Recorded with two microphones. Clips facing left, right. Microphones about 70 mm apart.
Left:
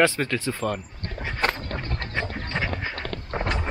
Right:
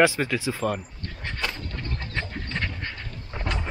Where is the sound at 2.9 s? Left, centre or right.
Left.